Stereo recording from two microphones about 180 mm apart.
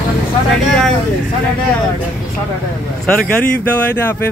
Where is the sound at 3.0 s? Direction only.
5° left (ahead or behind).